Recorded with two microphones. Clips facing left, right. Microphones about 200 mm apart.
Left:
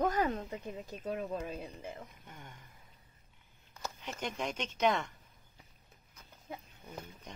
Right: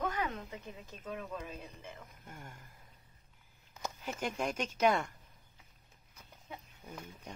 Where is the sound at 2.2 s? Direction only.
5° right (ahead or behind).